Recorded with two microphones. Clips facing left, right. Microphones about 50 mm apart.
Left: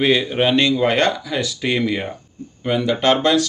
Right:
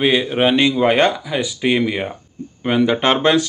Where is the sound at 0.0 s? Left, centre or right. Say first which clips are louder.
Right 1 dB; centre.